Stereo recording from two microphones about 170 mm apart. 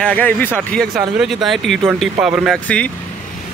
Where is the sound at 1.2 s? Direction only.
Centre (ahead or behind).